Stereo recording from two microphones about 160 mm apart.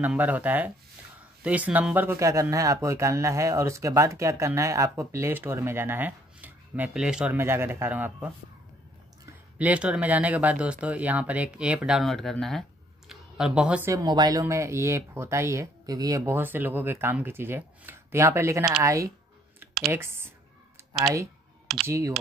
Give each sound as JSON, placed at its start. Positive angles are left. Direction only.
{"t": 0.0, "sound": "speech", "side_deg": -10}
{"t": 9.6, "sound": "speech", "side_deg": -10}
{"t": 13.9, "sound": "speech", "side_deg": -25}
{"t": 21.8, "sound": "speech", "side_deg": -20}